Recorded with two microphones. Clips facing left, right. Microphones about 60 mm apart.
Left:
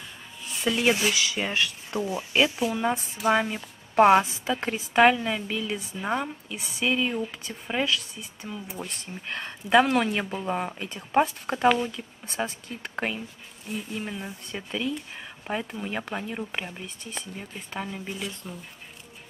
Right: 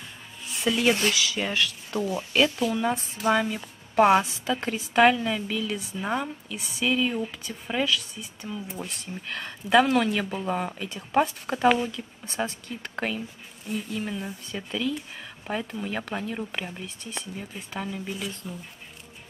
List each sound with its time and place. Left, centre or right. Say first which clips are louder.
0.7 s speech: right 1 dB; centre
1.1 s a woman's voice: even; centre
3.4 s a woman's voice: right 1 dB; centre
5.6 s a woman's voice: right 1 dB; left
5.9 s speech: even; centre
6.5 s a woman's voice: right 1 dB; left; by 8.8 s centre
9.3 s speech: even; centre
14.8 s a woman's voice: right 1 dB; left; by 17.3 s centre
17.4 s speech: left 1 dB; centre